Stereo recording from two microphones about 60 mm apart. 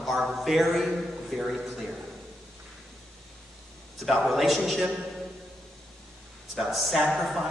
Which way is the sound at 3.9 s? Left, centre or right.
Centre.